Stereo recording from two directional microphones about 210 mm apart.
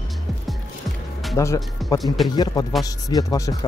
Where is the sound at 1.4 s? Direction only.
15° left (ahead or behind).